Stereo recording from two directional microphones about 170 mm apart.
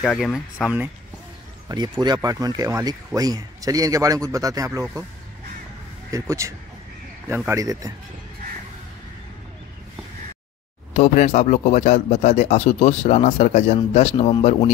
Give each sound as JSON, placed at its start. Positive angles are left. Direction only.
{"t": 0.0, "sound": "speech", "side_deg": 0}
{"t": 1.7, "sound": "speech", "side_deg": -25}
{"t": 6.1, "sound": "speech", "side_deg": -15}
{"t": 10.9, "sound": "speech", "side_deg": 45}